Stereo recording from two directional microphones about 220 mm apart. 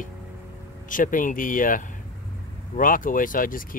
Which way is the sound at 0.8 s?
35° left (ahead or behind).